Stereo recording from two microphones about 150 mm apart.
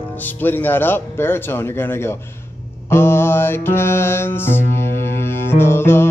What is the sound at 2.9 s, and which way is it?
Music, 15° left (ahead or behind).